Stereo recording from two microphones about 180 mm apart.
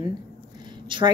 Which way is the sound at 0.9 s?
25° right (ahead or behind).